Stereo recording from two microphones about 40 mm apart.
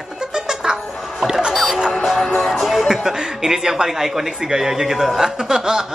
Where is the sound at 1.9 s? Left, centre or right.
Centre.